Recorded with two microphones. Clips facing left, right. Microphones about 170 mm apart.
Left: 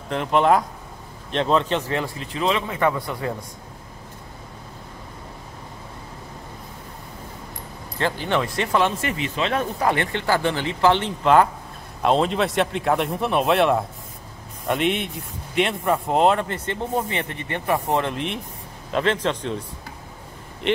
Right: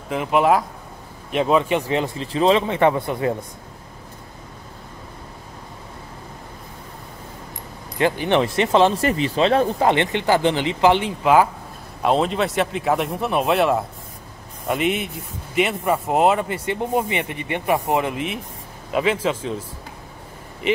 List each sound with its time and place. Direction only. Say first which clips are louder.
0.1 s speech: right 1 dB; 5° right (ahead or behind)
2.3 s speech: right 6 dB; 30° right (ahead or behind)
8.0 s speech: right 5 dB; 15° right (ahead or behind)
20.6 s speech: right 1 dB; 5° right (ahead or behind)